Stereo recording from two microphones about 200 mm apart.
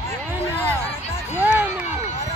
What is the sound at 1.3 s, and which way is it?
Music, 10° right (ahead or behind).